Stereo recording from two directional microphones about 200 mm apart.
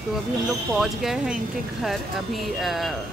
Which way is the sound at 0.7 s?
Centre (ahead or behind).